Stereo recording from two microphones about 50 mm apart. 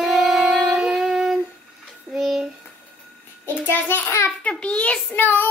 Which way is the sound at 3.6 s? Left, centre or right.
Left.